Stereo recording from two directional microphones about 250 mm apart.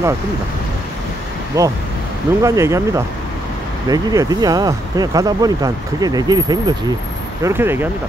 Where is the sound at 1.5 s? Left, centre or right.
Centre.